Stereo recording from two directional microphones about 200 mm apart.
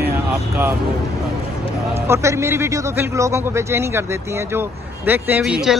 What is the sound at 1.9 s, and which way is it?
A man's voice, 15° right (ahead or behind).